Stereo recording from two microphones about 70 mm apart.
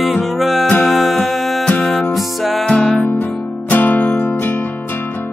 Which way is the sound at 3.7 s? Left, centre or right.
Left.